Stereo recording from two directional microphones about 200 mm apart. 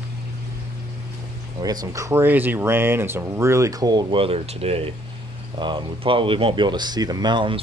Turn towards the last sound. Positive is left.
turn(degrees=-25)  # may be behind; listen again after turning